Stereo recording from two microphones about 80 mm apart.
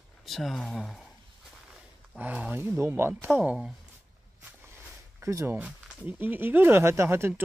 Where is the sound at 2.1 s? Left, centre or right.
Centre.